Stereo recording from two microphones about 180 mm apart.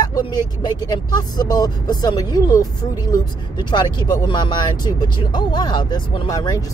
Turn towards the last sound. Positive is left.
turn(degrees=20)  # may be behind; listen again after turning